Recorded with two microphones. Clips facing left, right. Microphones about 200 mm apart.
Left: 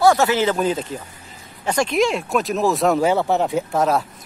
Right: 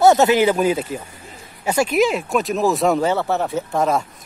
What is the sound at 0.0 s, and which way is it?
Speech, 20° right (ahead or behind).